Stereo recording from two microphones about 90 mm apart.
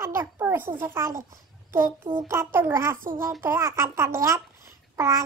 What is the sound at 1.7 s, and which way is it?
A child's voice, 25° right (ahead or behind).